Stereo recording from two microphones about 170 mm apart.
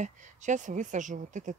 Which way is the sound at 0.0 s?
45° right (ahead or behind).